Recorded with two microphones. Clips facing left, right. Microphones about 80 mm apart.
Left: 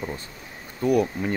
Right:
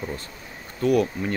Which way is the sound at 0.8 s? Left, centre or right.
Centre.